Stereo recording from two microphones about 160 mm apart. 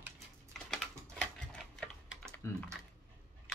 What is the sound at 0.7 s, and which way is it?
Typing, 5° left (ahead or behind).